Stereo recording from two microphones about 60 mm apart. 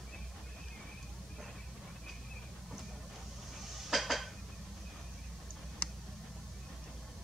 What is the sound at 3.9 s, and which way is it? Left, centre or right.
Dishes, centre.